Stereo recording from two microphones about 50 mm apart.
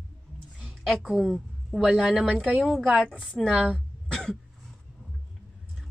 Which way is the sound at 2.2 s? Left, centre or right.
Centre.